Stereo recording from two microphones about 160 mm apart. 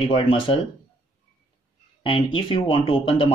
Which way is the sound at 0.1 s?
35° left (ahead or behind).